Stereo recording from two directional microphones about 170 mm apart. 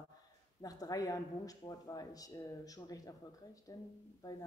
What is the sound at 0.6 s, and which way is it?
Speech, 20° left (ahead or behind).